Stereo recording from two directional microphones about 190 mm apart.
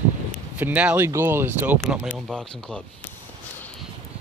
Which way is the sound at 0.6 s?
10° right (ahead or behind).